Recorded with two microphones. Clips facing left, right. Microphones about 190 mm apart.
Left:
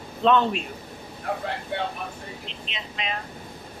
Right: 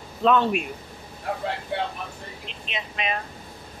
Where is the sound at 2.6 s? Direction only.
60° right (ahead or behind).